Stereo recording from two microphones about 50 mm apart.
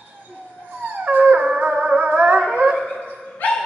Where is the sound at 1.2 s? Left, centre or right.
Right.